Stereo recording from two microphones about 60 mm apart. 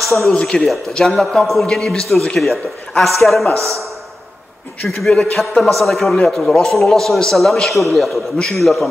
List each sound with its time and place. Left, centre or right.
0.0 s a man's voice: centre
3.5 s speech: right
4.8 s a man's voice: centre